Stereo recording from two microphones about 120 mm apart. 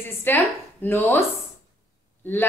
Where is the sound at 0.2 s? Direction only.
15° left (ahead or behind).